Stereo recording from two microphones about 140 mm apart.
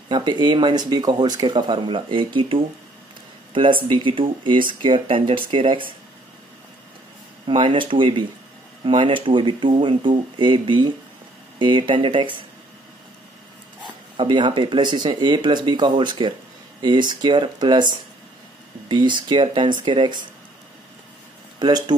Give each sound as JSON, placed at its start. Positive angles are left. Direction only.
{"t": 0.1, "sound": "speech", "side_deg": -30}
{"t": 7.4, "sound": "speech", "side_deg": -35}
{"t": 14.1, "sound": "speech", "side_deg": -35}
{"t": 21.5, "sound": "speech", "side_deg": -30}